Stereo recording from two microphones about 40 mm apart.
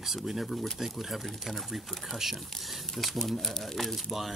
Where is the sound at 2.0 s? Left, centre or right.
Centre.